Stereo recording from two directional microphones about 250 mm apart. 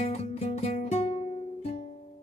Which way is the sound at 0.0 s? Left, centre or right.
Left.